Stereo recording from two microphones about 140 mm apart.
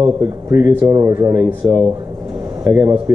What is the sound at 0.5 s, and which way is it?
Speech, 20° right (ahead or behind).